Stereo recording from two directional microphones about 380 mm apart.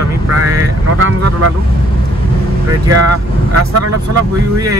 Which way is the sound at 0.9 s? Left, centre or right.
Right.